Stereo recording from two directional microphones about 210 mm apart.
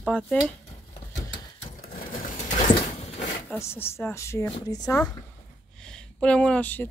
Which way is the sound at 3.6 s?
10° left (ahead or behind).